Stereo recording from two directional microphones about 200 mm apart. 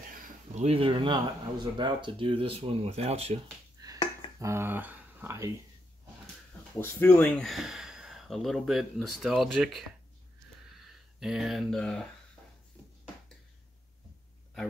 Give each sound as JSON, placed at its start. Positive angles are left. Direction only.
{"t": 0.1, "sound": "speech", "side_deg": -40}
{"t": 4.4, "sound": "speech", "side_deg": -15}
{"t": 6.7, "sound": "speech", "side_deg": 10}